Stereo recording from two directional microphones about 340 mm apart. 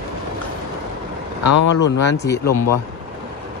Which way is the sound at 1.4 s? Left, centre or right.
Left.